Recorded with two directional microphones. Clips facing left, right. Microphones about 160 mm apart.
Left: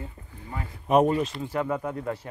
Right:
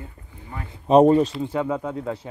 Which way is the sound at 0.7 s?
30° right (ahead or behind).